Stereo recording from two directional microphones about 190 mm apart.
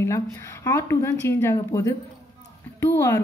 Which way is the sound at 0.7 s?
15° left (ahead or behind).